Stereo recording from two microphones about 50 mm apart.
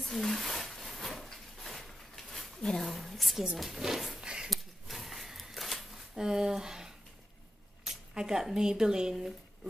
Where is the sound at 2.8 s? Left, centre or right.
Centre.